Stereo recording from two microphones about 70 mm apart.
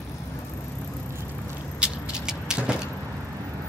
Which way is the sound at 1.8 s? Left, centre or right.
Centre.